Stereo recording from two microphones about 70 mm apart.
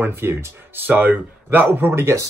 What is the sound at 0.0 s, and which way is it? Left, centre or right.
Speech, right.